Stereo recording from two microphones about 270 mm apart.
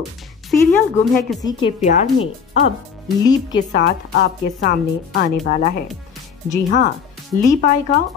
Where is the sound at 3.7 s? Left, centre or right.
Left.